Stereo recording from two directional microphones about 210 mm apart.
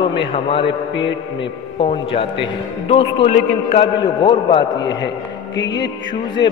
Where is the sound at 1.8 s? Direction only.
25° left (ahead or behind).